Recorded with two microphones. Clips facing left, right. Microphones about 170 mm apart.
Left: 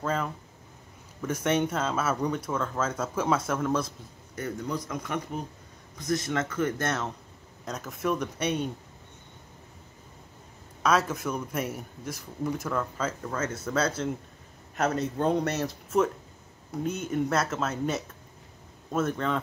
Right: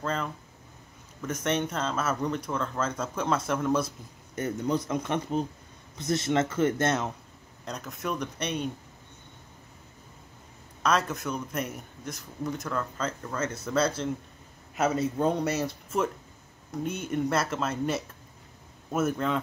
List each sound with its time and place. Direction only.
0.0 s a sound: 5° left (ahead or behind)
1.2 s speech: 5° left (ahead or behind)
4.4 s a man's voice: 25° right (ahead or behind)
7.6 s speech: centre (ahead or behind)
10.8 s speech: 5° left (ahead or behind)